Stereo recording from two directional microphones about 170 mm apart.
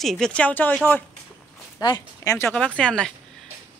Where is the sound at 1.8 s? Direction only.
20° left (ahead or behind).